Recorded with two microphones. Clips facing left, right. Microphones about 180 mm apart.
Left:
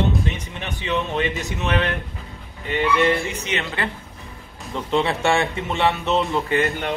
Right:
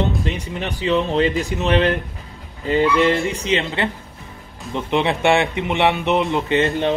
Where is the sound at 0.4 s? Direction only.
35° right (ahead or behind).